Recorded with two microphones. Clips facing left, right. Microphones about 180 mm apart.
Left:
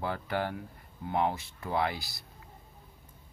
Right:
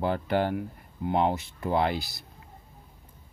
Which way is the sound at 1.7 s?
25° right (ahead or behind).